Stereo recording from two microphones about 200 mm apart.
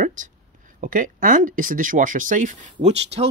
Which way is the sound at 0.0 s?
40° right (ahead or behind).